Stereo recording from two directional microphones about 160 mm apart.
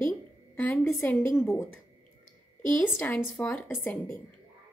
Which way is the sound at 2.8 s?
10° left (ahead or behind).